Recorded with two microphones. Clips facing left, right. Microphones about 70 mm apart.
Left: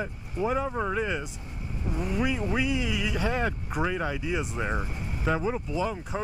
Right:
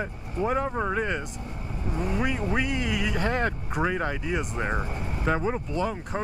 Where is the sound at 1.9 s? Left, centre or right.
Centre.